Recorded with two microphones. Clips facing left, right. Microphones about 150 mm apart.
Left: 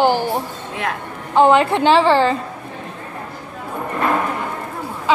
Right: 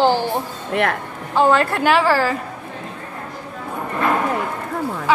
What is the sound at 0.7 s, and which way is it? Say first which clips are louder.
Speech: right 6 dB; 65° right (ahead or behind).